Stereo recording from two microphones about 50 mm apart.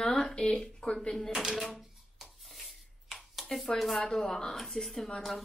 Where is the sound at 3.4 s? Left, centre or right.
Centre.